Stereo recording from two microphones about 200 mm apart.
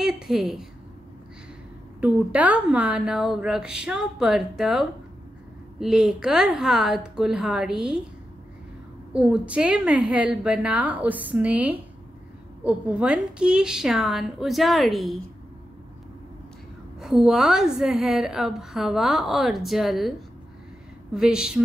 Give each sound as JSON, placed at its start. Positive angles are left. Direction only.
{"t": 0.0, "sound": "a woman's voice", "side_deg": 0}
{"t": 2.0, "sound": "a woman's voice", "side_deg": -5}
{"t": 9.1, "sound": "a woman's voice", "side_deg": -5}
{"t": 17.0, "sound": "a woman's voice", "side_deg": 0}